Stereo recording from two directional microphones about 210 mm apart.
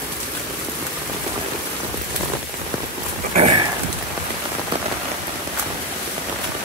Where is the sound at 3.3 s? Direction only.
30° right (ahead or behind).